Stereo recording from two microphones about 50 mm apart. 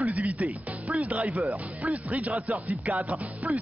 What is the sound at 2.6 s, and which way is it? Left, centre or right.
Music, right.